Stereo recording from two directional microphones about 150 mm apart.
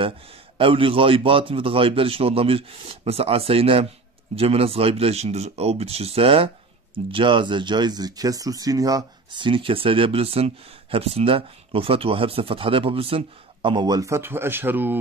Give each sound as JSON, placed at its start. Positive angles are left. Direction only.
{"t": 0.6, "sound": "speech", "side_deg": -35}